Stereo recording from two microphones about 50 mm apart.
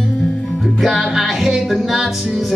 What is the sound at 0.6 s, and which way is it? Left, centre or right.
Music, centre.